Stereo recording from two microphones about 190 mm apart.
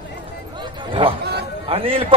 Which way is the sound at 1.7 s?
30° right (ahead or behind).